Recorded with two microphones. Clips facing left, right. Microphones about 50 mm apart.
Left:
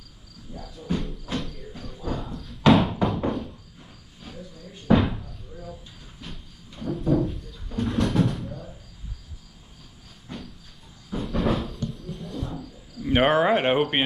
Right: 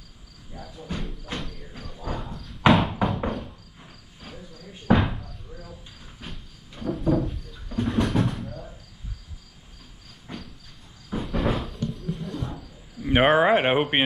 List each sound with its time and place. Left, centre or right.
0.6 s cricket: centre
2.7 s a sound: centre
3.3 s cricket: centre
6.2 s train: centre
7.0 s a sound: centre
10.3 s cricket: right
11.2 s a sound: centre
12.4 s cricket: centre
13.0 s speech: centre